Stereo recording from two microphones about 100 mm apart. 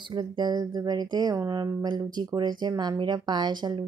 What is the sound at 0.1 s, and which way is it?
Speech, 45° right (ahead or behind).